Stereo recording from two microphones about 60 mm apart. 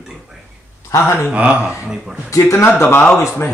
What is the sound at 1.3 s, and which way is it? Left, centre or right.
Speech, right.